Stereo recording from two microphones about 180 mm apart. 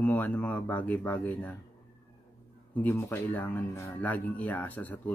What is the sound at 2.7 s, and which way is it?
Speech, 10° left (ahead or behind).